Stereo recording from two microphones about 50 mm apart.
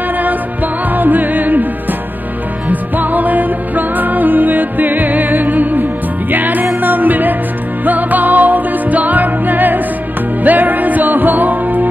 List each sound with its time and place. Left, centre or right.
0.9 s music: right
2.7 s music: right